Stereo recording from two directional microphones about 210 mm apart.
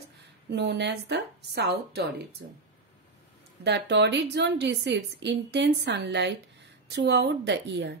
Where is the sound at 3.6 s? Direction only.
55° right (ahead or behind).